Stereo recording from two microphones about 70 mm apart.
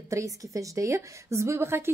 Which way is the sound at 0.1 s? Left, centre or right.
Right.